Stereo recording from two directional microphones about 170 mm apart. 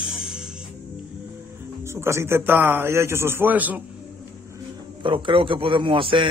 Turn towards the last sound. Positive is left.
turn(degrees=-30)  # may be behind; listen again after turning